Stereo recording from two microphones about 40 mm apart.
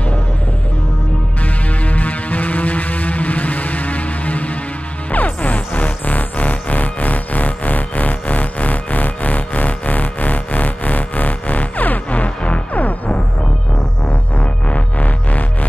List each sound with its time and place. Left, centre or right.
1.4 s music: left
14.4 s music: left